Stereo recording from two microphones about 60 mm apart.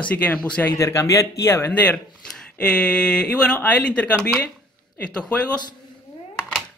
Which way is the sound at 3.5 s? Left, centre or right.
Left.